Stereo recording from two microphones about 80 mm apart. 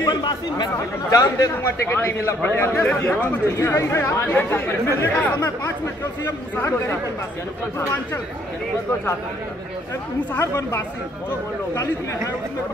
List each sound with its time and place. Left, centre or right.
0.0 s speech: left
1.1 s speech: left
1.9 s a man's voice: left
3.3 s a man's voice: left
10.4 s speech: left